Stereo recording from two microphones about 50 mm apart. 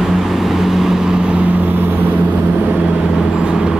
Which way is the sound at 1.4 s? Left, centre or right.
Right.